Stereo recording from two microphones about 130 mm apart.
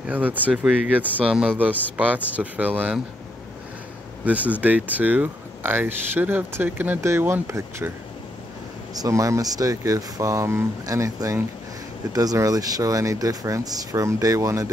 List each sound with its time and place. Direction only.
0.1 s speech: 15° right (ahead or behind)
4.2 s speech: 10° right (ahead or behind)
8.9 s speech: 25° right (ahead or behind)